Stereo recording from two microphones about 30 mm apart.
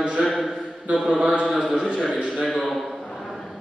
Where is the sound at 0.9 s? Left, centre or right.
Right.